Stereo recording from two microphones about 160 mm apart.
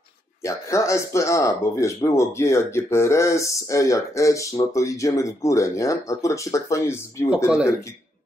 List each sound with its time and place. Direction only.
0.4 s speech: 20° left (ahead or behind)
7.4 s speech: 5° right (ahead or behind)